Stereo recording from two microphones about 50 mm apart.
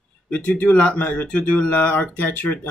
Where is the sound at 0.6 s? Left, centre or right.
Left.